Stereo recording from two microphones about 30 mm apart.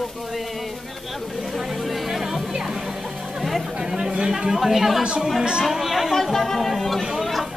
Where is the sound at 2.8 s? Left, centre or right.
Centre.